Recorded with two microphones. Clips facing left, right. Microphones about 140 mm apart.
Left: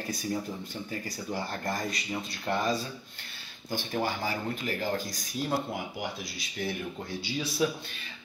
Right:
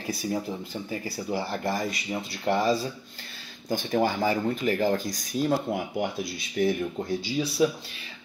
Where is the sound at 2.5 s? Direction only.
15° right (ahead or behind).